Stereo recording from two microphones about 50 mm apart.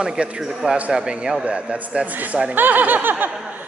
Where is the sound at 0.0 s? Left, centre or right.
Centre.